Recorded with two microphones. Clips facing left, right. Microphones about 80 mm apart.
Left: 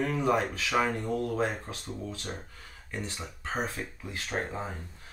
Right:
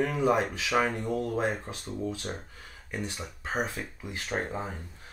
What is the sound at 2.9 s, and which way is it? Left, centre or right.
Speech, centre.